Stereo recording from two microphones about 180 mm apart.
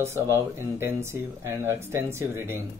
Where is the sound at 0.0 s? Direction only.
15° right (ahead or behind).